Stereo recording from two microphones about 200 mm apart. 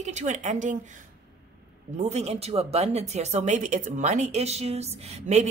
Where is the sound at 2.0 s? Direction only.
35° right (ahead or behind).